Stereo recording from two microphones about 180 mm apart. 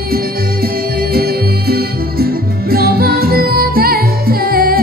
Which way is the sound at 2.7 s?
55° right (ahead or behind).